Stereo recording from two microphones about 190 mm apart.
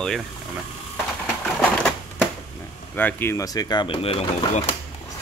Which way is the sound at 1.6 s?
5° left (ahead or behind).